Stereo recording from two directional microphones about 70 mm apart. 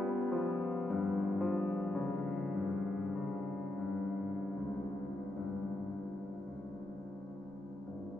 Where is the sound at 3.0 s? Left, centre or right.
Centre.